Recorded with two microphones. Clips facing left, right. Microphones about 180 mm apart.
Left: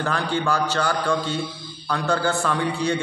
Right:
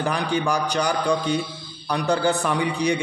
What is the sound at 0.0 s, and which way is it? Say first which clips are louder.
A man's voice: right 1 dB; 15° right (ahead or behind).